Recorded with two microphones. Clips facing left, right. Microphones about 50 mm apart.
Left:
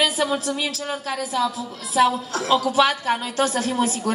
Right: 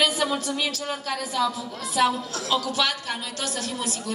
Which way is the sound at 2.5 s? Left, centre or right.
Centre.